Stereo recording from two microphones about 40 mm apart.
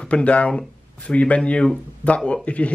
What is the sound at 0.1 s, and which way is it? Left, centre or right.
Speech, left.